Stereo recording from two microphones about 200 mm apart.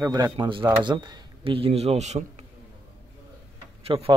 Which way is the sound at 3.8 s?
30° right (ahead or behind).